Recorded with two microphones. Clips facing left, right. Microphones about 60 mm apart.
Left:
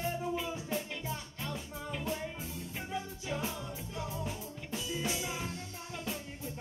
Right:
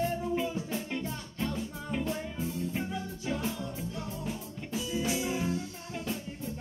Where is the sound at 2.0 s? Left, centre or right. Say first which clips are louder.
Right 5 dB; centre.